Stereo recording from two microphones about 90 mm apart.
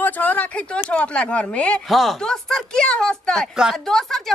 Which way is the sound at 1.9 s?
Centre (ahead or behind).